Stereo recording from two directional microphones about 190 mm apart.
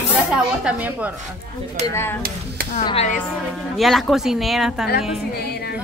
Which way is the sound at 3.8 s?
Centre (ahead or behind).